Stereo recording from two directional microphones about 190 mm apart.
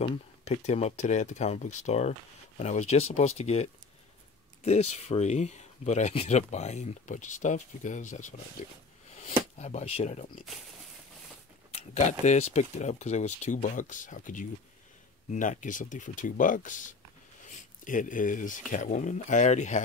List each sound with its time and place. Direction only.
0.0 s speech: 35° left (ahead or behind)
11.7 s speech: 35° left (ahead or behind)